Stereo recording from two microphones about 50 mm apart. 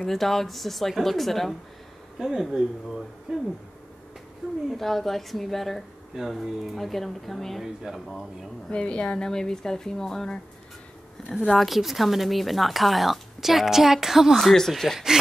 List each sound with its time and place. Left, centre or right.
0.0 s speech: centre
2.1 s speech: centre
4.6 s speech: centre
6.1 s speech: centre
7.6 s speech: centre
8.6 s speech: centre
11.5 s speech: centre
14.4 s speech: centre